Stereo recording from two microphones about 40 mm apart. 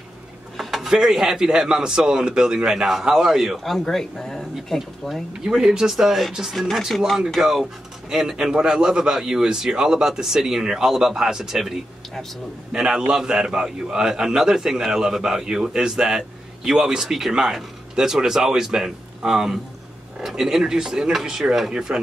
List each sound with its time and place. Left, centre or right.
0.6 s a sound: centre
0.8 s a man's voice: centre
5.4 s a man's voice: centre
6.7 s speech: centre
7.4 s a man's voice: centre